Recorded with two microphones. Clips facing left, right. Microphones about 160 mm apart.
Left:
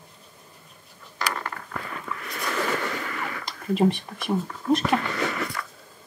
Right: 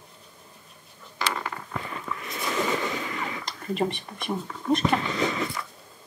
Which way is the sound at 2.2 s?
20° right (ahead or behind).